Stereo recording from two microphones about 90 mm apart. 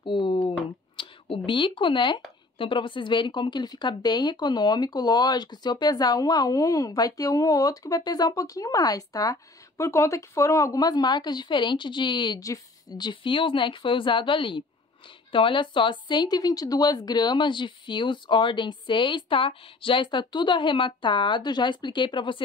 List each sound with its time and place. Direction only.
0.0 s a sound: 65° left (ahead or behind)
0.9 s speech: 70° left (ahead or behind)
12.4 s a woman's voice: 45° left (ahead or behind); by 22.4 s 65° left (ahead or behind)